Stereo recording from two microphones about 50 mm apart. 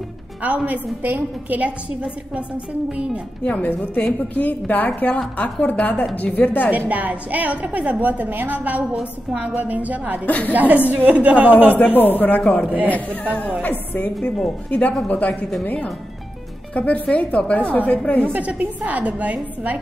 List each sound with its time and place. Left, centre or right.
0.7 s a woman's voice: right
3.4 s a woman's voice: left
4.0 s a woman's voice: left
6.9 s a woman's voice: right
10.2 s a woman's voice: left
10.5 s a woman's voice: right
11.7 s a woman's voice: left
12.4 s a woman's voice: left
18.6 s a woman's voice: right